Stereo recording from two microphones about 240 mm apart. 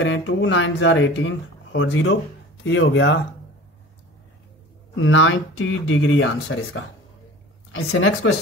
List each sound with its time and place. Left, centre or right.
0.0 s speech: left
4.9 s speech: left